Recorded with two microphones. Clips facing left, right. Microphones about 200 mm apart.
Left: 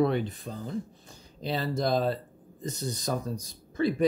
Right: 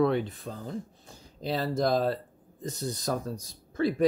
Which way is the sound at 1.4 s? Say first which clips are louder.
Right 1 dB; centre (ahead or behind).